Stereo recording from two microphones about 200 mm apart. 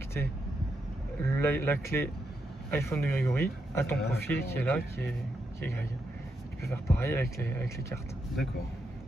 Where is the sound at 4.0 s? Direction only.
55° left (ahead or behind).